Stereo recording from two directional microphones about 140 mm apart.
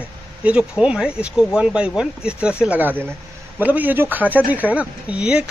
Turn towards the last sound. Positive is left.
turn(degrees=-10)  # may be behind; listen again after turning